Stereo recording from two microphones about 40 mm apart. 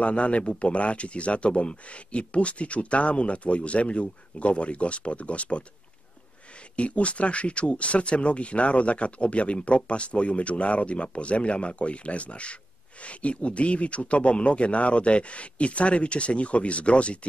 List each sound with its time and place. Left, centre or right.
0.0 s speech: left
6.8 s speech: left